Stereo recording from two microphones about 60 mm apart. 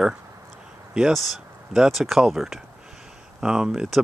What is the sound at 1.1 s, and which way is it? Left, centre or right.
Speech, centre.